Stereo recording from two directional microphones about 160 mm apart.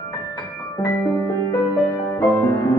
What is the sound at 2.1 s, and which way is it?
Music, 20° left (ahead or behind).